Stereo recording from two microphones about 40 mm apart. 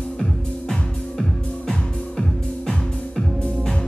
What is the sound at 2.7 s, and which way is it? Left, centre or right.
Music, left.